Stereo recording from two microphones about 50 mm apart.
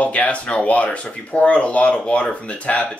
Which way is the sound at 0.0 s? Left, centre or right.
Left.